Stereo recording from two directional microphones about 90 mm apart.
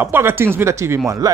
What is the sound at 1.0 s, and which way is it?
Speech, 40° right (ahead or behind).